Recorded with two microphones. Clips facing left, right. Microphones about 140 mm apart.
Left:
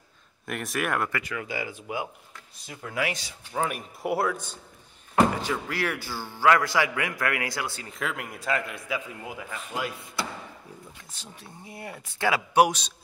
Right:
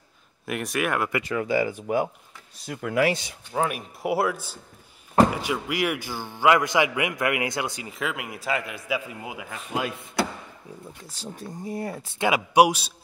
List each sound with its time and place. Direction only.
0.5 s a man's voice: centre (ahead or behind)
1.2 s speech: 35° right (ahead or behind)
2.6 s speech: 65° right (ahead or behind)
3.5 s a man's voice: 5° right (ahead or behind)
7.9 s a man's voice: 5° right (ahead or behind); by 10.1 s 20° right (ahead or behind)
11.1 s speech: 40° right (ahead or behind)
12.2 s a man's voice: 15° right (ahead or behind)